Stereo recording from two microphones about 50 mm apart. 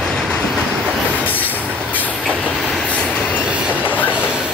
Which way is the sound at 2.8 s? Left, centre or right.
Left.